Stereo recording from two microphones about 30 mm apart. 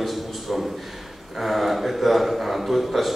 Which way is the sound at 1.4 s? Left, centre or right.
Centre.